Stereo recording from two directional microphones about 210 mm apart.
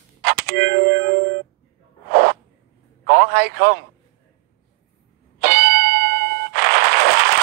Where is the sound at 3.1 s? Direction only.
50° right (ahead or behind).